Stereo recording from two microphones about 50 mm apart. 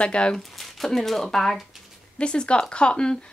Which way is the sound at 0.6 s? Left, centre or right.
Centre.